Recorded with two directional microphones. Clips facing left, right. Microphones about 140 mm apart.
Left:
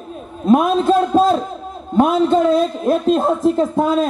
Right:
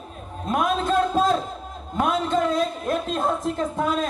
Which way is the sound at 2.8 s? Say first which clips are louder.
Left 9 dB; 30° left (ahead or behind).